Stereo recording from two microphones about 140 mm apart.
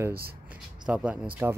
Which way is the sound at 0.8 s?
10° right (ahead or behind).